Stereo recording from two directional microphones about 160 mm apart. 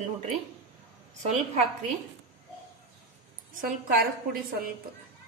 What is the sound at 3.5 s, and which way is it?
Speech, 60° right (ahead or behind).